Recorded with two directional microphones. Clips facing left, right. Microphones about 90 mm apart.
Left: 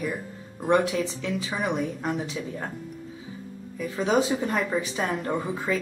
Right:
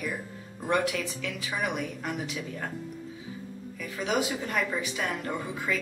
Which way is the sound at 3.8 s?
30° left (ahead or behind).